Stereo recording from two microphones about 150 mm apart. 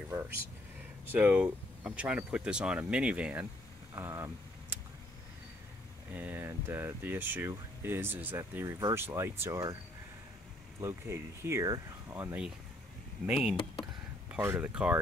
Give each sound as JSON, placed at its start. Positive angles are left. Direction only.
{"t": 1.0, "sound": "speech", "side_deg": -10}
{"t": 3.9, "sound": "vehicle", "side_deg": -20}
{"t": 6.1, "sound": "speech", "side_deg": -15}
{"t": 10.8, "sound": "speech", "side_deg": -20}
{"t": 13.3, "sound": "speech", "side_deg": -5}